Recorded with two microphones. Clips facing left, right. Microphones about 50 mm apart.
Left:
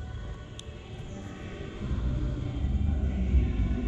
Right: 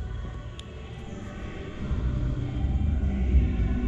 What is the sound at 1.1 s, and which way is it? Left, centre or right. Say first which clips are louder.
Music: right 2 dB; centre.